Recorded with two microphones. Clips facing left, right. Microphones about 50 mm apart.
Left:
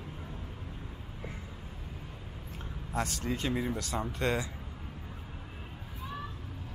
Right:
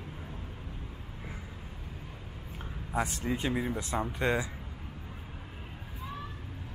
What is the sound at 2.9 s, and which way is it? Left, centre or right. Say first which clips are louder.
Speech: right 2 dB; centre.